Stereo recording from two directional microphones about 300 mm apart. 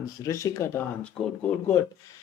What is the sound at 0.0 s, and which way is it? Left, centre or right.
Speech, centre.